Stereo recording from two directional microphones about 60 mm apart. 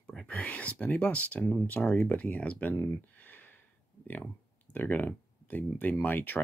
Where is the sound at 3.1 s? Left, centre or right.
Left.